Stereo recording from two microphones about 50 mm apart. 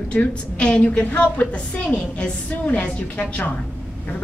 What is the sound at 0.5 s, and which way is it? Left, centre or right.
Speech, left.